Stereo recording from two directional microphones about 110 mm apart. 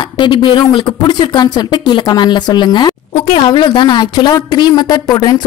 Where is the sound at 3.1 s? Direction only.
80° left.